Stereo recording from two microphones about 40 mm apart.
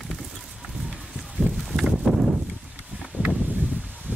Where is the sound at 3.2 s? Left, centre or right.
Right.